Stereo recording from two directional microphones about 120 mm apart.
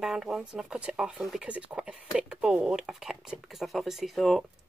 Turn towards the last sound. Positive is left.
turn(degrees=0)  # may be behind; listen again after turning